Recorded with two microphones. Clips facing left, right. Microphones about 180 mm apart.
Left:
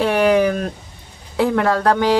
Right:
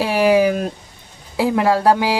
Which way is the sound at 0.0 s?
5° right (ahead or behind).